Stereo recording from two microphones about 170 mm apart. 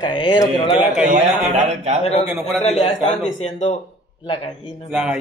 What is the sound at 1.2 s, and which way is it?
Speech, 40° right (ahead or behind).